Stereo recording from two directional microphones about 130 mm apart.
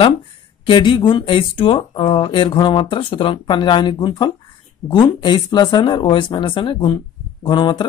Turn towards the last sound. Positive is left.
turn(degrees=35)  # may be behind; listen again after turning